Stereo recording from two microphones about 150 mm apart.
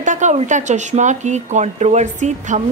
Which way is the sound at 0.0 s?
55° right (ahead or behind).